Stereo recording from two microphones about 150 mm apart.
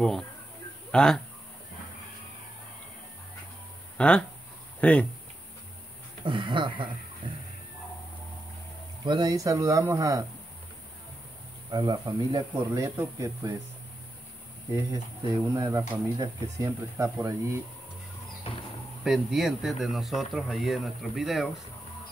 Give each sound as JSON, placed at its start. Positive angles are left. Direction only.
{"t": 0.9, "sound": "speech", "side_deg": 5}
{"t": 4.0, "sound": "speech", "side_deg": 5}
{"t": 6.2, "sound": "speech", "side_deg": -35}
{"t": 9.0, "sound": "speech", "side_deg": -30}
{"t": 11.7, "sound": "speech", "side_deg": -25}
{"t": 14.7, "sound": "speech", "side_deg": -20}
{"t": 19.0, "sound": "speech", "side_deg": 0}